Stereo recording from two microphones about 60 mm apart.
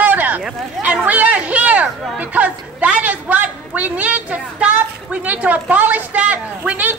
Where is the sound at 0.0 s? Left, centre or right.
Right.